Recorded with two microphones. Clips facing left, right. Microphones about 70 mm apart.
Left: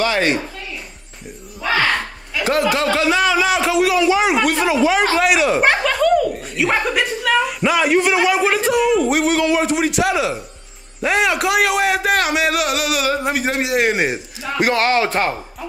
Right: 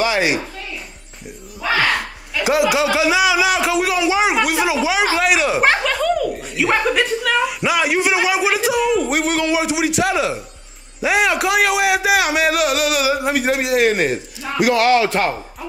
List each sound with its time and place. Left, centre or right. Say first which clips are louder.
0.0 s a sound: even; centre
1.6 s a sound: even; centre
2.4 s speech: right 1 dB; centre
4.0 s speech: left 1 dB; centre
8.0 s a man's voice: left 1 dB; centre
14.6 s speech: right 2 dB; left